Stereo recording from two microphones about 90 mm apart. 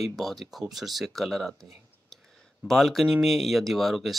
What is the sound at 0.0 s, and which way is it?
Speech, centre (ahead or behind).